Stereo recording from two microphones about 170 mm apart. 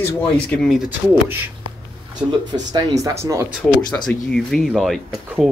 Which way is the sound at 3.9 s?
5° left (ahead or behind).